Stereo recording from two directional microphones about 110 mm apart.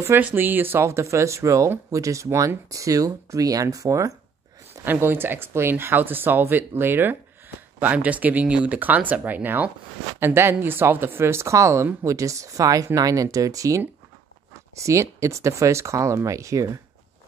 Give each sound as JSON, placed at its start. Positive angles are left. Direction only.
{"t": 0.0, "sound": "speech", "side_deg": -15}
{"t": 4.8, "sound": "speech", "side_deg": -20}